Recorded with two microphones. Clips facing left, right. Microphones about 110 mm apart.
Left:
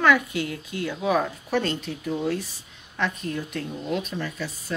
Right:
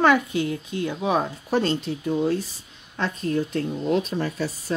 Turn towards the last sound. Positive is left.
turn(degrees=-35)  # may be behind; listen again after turning